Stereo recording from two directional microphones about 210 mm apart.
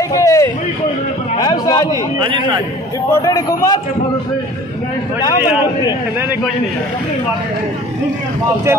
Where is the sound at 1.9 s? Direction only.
20° right (ahead or behind).